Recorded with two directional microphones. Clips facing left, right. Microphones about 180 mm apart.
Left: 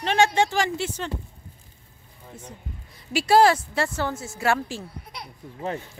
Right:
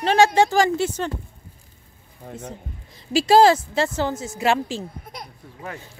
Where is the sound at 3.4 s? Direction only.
25° right (ahead or behind).